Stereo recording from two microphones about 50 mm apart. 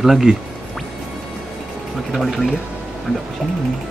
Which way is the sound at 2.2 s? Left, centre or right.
Centre.